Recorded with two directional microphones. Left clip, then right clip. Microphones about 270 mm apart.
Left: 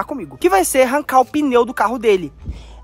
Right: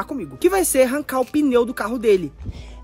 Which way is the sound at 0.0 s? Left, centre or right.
Centre.